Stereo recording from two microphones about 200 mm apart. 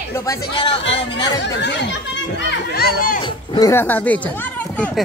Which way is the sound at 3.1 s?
20° left (ahead or behind).